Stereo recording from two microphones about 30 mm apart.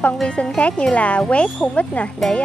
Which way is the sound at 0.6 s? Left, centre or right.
Left.